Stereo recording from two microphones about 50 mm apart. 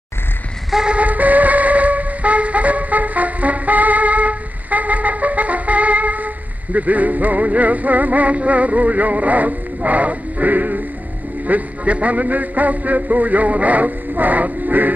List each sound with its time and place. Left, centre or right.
0.8 s wind instrument: right
11.4 s music: right